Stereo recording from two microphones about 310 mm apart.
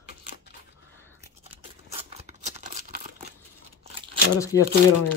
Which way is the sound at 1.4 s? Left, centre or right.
Centre.